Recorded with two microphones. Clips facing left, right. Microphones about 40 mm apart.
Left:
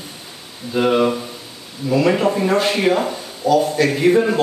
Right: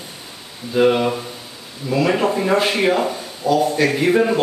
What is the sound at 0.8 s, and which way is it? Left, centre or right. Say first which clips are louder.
Speech: even; centre.